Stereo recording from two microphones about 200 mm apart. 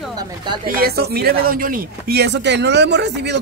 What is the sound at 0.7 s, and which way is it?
Speech, 50° right (ahead or behind).